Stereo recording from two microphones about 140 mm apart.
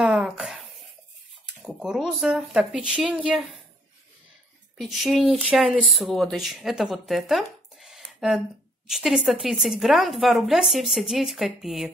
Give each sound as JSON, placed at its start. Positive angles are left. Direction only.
{"t": 0.0, "sound": "a sound", "side_deg": -5}
{"t": 1.6, "sound": "a woman's voice", "side_deg": -5}
{"t": 4.7, "sound": "a woman's voice", "side_deg": 0}